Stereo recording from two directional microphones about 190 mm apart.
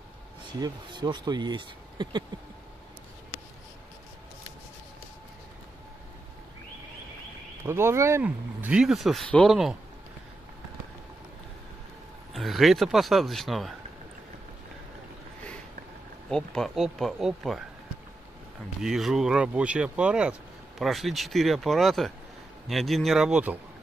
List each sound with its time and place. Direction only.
0.5 s speech: 20° right (ahead or behind)
7.6 s speech: 15° right (ahead or behind)
12.4 s speech: centre (ahead or behind)
16.3 s speech: 5° left (ahead or behind)
18.8 s speech: centre (ahead or behind)